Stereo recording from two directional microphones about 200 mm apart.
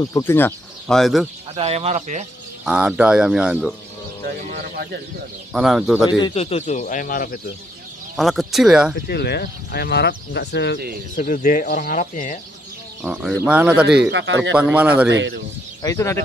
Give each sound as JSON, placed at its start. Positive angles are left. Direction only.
{"t": 0.0, "sound": "speech", "side_deg": 15}
{"t": 1.5, "sound": "speech", "side_deg": -30}
{"t": 2.6, "sound": "speech", "side_deg": -5}
{"t": 5.5, "sound": "speech", "side_deg": 0}
{"t": 6.0, "sound": "speech", "side_deg": 20}
{"t": 8.2, "sound": "speech", "side_deg": 0}
{"t": 9.0, "sound": "speech", "side_deg": 50}
{"t": 11.1, "sound": "speech", "side_deg": 40}
{"t": 13.0, "sound": "speech", "side_deg": 0}
{"t": 14.1, "sound": "speech", "side_deg": -65}
{"t": 14.5, "sound": "speech", "side_deg": -10}
{"t": 15.0, "sound": "speech", "side_deg": -65}
{"t": 15.8, "sound": "speech", "side_deg": 15}